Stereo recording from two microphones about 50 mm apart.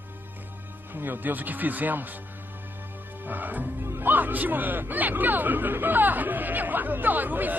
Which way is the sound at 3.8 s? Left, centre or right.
Right.